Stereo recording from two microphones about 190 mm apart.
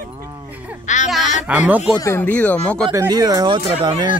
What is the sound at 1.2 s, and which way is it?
Speech, 40° left (ahead or behind).